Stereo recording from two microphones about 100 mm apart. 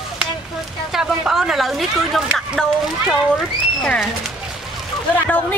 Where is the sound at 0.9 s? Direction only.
5° right (ahead or behind).